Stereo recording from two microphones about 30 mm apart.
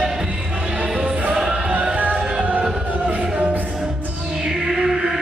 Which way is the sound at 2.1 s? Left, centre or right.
Right.